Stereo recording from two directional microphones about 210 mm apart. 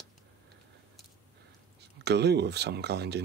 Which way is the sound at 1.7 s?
50° right (ahead or behind).